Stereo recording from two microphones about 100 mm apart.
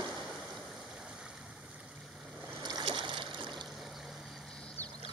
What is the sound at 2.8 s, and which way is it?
Boat, 55° right (ahead or behind).